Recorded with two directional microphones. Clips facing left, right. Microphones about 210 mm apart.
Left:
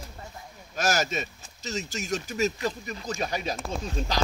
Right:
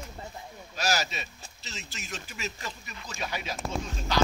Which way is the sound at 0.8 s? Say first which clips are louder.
Left 4 dB; 50° left (ahead or behind).